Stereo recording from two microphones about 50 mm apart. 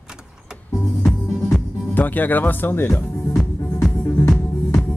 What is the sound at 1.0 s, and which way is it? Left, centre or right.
Music, centre.